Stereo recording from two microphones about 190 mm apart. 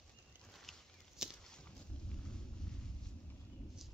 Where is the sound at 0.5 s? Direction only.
Centre (ahead or behind).